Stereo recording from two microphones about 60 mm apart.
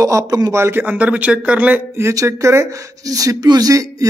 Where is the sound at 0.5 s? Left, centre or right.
Right.